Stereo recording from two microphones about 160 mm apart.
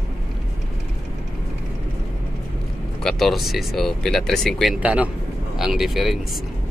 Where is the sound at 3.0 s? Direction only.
Centre (ahead or behind).